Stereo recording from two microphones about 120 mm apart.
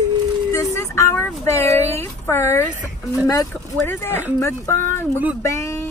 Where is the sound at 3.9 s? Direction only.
20° left (ahead or behind).